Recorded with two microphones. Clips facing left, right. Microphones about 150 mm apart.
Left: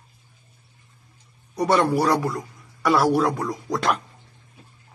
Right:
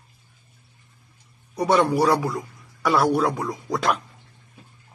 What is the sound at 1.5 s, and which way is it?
A man's voice, centre (ahead or behind).